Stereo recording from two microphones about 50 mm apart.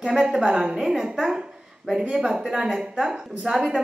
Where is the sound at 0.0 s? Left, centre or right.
Centre.